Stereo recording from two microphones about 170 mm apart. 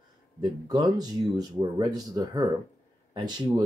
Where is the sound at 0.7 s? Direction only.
25° right (ahead or behind).